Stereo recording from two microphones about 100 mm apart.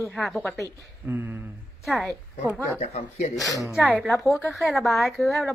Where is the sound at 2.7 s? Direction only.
90° left.